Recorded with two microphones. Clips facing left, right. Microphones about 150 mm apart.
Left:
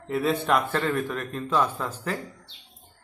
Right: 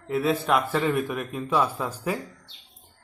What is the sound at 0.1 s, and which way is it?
A man's voice, centre (ahead or behind).